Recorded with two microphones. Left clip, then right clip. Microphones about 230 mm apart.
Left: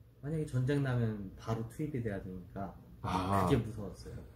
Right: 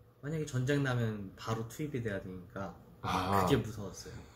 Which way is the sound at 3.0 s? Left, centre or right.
Centre.